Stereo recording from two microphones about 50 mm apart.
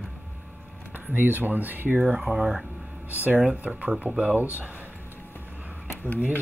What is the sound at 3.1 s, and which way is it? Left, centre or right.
Speech, right.